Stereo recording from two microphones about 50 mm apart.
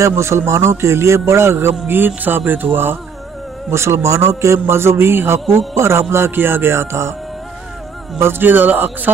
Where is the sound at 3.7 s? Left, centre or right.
Right.